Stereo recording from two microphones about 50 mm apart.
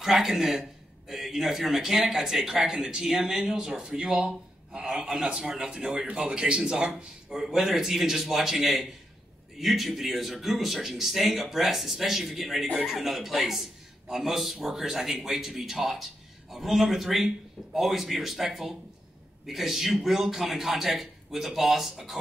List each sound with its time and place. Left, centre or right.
0.0 s a man's voice: centre
4.1 s speech: right
4.8 s a man's voice: centre
7.0 s a man's voice: centre